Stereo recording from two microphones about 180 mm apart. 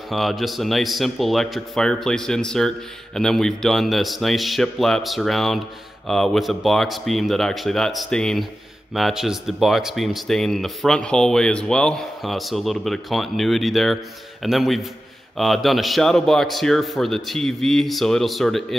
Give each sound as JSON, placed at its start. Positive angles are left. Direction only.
{"t": 0.1, "sound": "speech", "side_deg": 0}